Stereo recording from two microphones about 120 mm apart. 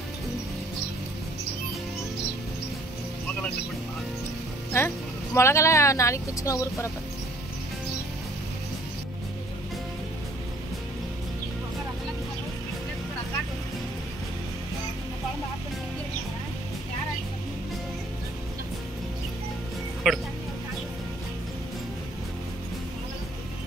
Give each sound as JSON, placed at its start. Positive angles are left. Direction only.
{"t": 4.7, "sound": "speech", "side_deg": 20}
{"t": 20.1, "sound": "music", "side_deg": 0}